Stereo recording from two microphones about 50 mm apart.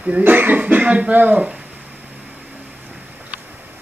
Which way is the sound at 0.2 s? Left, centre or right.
Right.